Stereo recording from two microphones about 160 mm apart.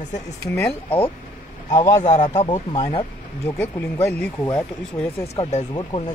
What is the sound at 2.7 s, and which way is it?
Speech, 35° left (ahead or behind).